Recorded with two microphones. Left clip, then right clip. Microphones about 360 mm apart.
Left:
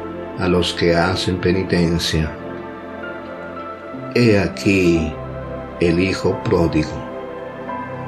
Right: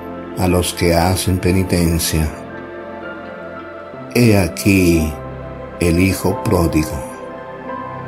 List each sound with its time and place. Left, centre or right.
0.4 s speech: right
4.1 s speech: right